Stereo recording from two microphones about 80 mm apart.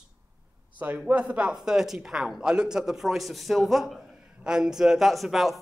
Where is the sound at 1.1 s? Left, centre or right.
Centre.